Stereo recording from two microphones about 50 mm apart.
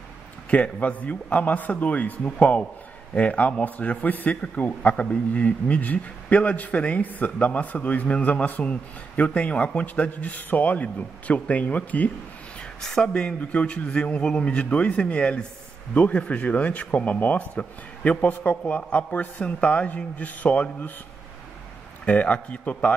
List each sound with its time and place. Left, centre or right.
0.5 s a man's voice: left
12.8 s speech: centre
13.1 s a man's voice: left
18.6 s a man's voice: left
22.0 s a man's voice: left